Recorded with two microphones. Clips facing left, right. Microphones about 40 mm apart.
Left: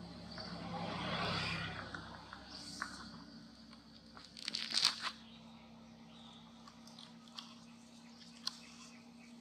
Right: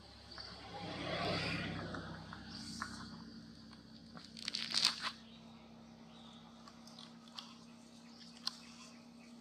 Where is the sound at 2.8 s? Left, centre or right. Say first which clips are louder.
Left 1 dB; centre.